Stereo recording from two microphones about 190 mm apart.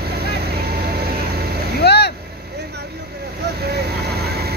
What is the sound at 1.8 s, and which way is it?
Vehicle, 60° left (ahead or behind).